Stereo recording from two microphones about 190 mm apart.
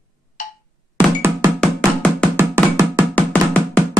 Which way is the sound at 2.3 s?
20° right (ahead or behind).